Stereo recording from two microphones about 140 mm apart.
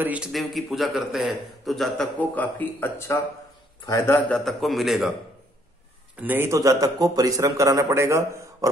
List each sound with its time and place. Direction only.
0.0 s a man's voice: 10° right (ahead or behind)
0.3 s a man's voice: centre (ahead or behind); by 4.2 s 20° left (ahead or behind)
4.3 s a man's voice: centre (ahead or behind)
6.1 s a man's voice: 15° right (ahead or behind)